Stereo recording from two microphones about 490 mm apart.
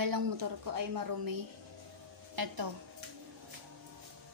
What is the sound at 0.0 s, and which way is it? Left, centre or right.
A woman's voice, right.